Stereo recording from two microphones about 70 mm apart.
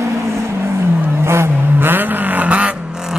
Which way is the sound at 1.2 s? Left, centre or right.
Right.